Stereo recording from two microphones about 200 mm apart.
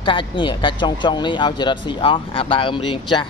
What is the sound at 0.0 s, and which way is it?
A man's voice, 25° left (ahead or behind).